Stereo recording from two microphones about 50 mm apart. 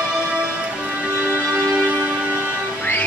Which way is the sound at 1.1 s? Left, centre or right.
Right.